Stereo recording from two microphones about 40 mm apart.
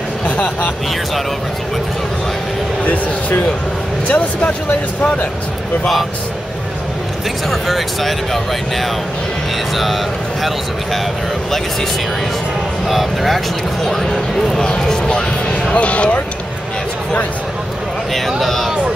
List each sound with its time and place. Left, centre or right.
2.8 s music: left
4.1 s speech: left
7.6 s speech: centre
12.8 s speech: centre
14.8 s music: centre
15.7 s speech: left
18.1 s speech: centre